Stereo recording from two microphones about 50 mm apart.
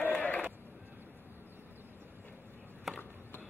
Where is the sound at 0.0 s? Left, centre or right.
Left.